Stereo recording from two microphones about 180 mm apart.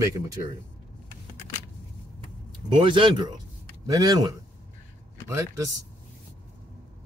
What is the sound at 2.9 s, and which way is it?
A man's voice, 25° right (ahead or behind).